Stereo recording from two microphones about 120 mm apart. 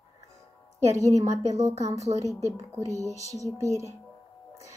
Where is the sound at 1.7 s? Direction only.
25° right (ahead or behind).